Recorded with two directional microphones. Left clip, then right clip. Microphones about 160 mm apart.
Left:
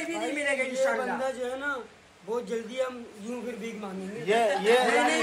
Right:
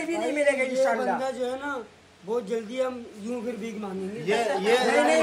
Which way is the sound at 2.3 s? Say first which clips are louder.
Right 3 dB; 20° right (ahead or behind).